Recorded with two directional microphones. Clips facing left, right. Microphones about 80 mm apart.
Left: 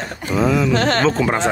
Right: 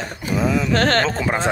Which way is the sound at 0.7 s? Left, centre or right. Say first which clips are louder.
Even; right.